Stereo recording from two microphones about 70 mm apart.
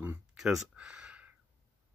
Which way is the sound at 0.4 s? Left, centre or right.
Centre.